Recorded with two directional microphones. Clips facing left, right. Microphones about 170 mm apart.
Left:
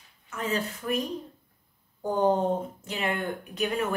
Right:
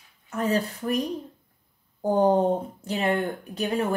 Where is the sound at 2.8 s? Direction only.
35° right (ahead or behind).